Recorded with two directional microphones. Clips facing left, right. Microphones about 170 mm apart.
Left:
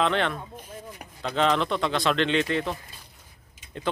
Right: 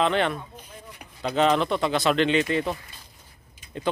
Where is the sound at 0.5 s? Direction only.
50° left (ahead or behind).